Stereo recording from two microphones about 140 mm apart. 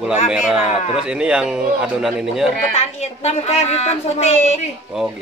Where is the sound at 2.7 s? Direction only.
55° left (ahead or behind).